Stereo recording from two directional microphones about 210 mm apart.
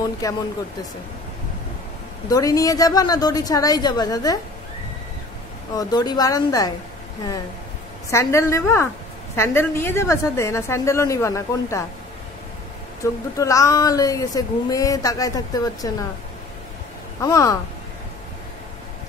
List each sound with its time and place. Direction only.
0.2 s speech: 15° left (ahead or behind)
2.2 s speech: 15° left (ahead or behind)
5.8 s speech: 20° left (ahead or behind)
8.1 s speech: 15° left (ahead or behind)
13.0 s speech: 15° left (ahead or behind)
17.2 s speech: 15° left (ahead or behind)